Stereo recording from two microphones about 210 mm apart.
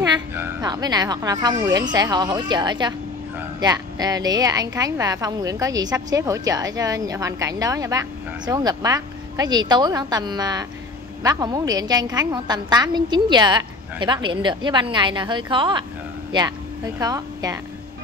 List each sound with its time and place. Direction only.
0.0 s a woman's voice: 15° right (ahead or behind)